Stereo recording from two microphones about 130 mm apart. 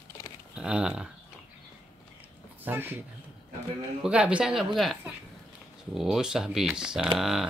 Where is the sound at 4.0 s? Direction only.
10° right (ahead or behind).